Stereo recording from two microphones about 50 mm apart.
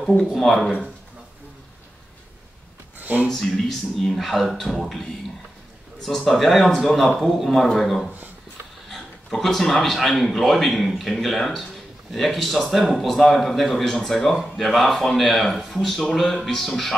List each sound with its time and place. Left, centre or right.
0.4 s speech: centre
3.0 s a sound: right
3.3 s speech: centre
6.0 s speech: centre